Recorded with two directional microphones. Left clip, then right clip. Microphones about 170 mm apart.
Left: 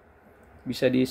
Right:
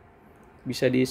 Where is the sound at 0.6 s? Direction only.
15° right (ahead or behind).